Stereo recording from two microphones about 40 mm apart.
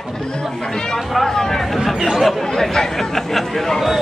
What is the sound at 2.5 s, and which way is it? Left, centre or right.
Speech, centre.